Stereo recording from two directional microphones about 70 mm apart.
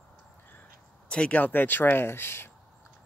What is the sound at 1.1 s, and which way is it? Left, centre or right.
Speech, centre.